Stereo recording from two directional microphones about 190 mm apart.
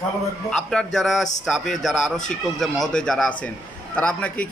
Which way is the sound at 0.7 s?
5° left (ahead or behind).